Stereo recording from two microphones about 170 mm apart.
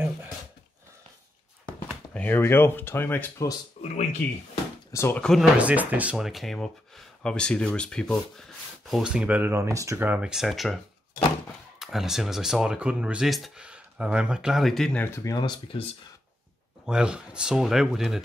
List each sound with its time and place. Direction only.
2.1 s speech: 10° left (ahead or behind)
3.8 s speech: 40° left (ahead or behind)
4.9 s speech: 15° left (ahead or behind)
5.2 s speech: centre (ahead or behind)
5.6 s speech: 10° right (ahead or behind)
11.8 s speech: centre (ahead or behind); by 16.0 s 35° left (ahead or behind)
16.8 s speech: 5° right (ahead or behind)